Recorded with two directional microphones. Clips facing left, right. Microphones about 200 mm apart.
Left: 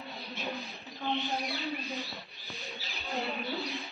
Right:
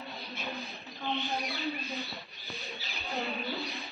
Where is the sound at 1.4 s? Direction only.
Centre (ahead or behind).